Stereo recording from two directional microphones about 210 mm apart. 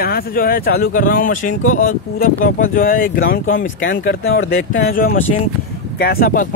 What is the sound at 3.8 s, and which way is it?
Speech, 65° left (ahead or behind).